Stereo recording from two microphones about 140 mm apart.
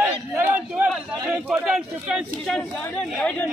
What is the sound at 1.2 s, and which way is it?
A man's voice, 5° right (ahead or behind).